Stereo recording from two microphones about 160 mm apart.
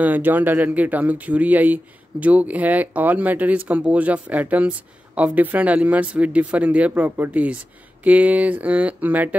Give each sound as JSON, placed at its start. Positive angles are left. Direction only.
{"t": 0.0, "sound": "speech", "side_deg": -10}